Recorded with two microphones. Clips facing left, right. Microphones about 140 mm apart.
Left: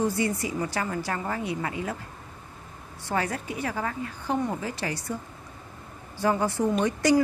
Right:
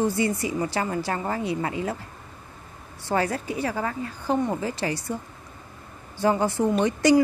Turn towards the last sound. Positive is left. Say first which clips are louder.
# right 3 dB
turn(degrees=-25)  # may be behind; listen again after turning